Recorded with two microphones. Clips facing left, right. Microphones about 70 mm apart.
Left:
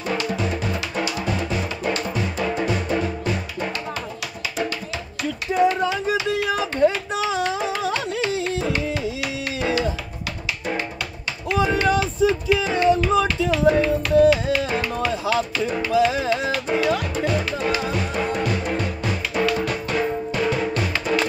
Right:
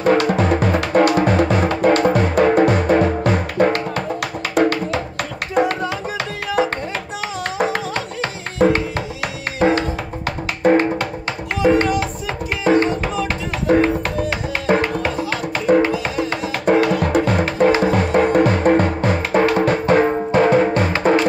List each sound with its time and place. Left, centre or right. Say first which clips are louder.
0.0 s music: right 9 dB; right
8.2 s music: right 5 dB; right